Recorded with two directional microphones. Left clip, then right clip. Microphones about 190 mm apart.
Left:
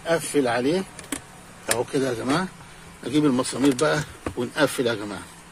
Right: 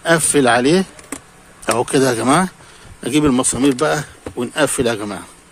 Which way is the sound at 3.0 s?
35° right (ahead or behind).